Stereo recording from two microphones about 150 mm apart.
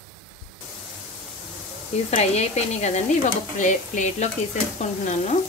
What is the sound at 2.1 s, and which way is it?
A woman's voice, 45° left (ahead or behind).